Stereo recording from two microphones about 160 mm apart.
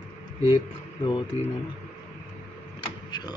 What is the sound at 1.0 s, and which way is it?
Speech, 30° left (ahead or behind).